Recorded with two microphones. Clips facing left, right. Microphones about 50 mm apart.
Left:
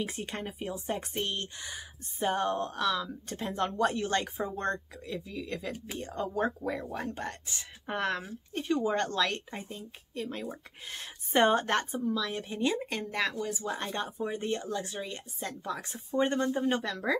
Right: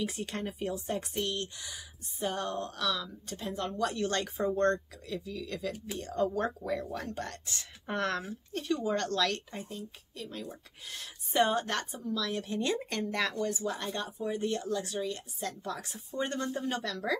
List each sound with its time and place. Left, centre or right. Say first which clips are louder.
0.0 s speech: even; left
0.4 s speech: right 2 dB; centre
4.6 s speech: right 5 dB; centre
8.5 s speech: left 2 dB; left
10.4 s speech: left 4 dB; left
11.9 s speech: left 2 dB; centre
13.7 s speech: left 1 dB; left